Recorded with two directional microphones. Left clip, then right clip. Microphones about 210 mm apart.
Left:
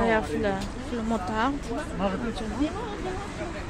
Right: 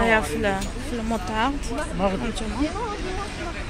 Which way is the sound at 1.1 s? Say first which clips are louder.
Right 2 dB; 10° left (ahead or behind).